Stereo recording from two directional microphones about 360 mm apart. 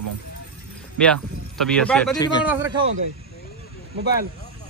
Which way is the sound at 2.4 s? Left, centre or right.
Centre.